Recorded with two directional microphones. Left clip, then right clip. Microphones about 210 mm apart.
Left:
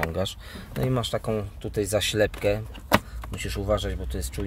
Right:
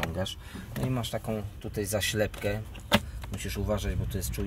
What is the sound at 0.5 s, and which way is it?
Speech, 25° left (ahead or behind).